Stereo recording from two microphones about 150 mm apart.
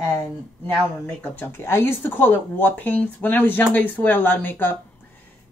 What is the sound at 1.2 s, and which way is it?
Speech, 15° left (ahead or behind).